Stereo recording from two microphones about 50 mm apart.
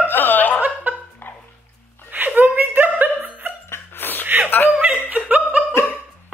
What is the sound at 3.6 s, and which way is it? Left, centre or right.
Dog, left.